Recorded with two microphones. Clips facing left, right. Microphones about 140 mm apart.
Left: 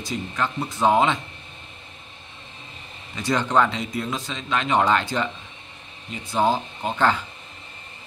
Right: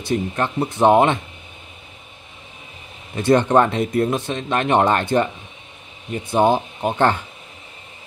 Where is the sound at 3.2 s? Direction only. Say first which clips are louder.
Right 6 dB; 55° right (ahead or behind).